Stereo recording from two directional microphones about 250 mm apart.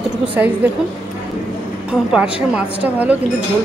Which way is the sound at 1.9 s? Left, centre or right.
Centre.